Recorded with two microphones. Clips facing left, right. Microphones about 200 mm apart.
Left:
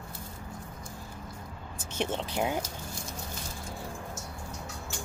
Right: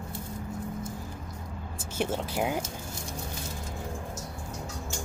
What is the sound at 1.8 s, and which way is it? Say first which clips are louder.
Speech: right 2 dB; 10° right (ahead or behind).